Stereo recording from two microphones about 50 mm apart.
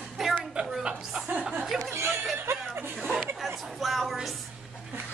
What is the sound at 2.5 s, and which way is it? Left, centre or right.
Chuckle, right.